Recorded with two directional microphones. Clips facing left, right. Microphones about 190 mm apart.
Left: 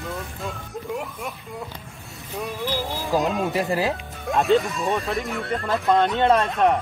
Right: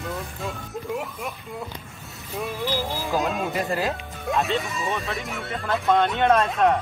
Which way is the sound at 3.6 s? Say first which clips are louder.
Left 2 dB; 20° left (ahead or behind).